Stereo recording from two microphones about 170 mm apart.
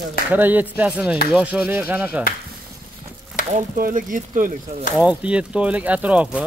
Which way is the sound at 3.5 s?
50° right (ahead or behind).